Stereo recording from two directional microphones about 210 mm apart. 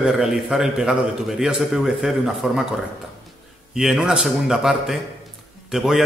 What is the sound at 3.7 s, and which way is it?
A man's voice, centre (ahead or behind).